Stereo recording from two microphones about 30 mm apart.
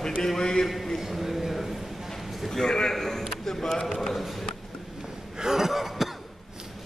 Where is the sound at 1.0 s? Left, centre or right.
Centre.